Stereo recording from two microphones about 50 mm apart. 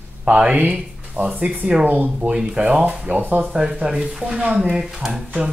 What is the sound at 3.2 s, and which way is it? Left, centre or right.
Speech, right.